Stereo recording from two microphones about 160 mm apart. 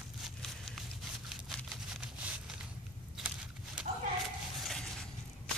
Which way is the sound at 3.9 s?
45° right (ahead or behind).